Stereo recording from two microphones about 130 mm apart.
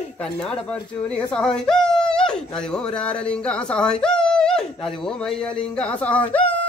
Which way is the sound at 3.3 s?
5° left (ahead or behind).